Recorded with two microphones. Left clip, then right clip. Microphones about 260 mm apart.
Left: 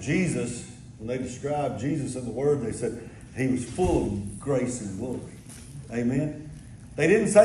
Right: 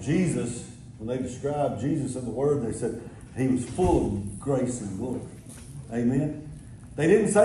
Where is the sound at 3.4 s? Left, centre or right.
Centre.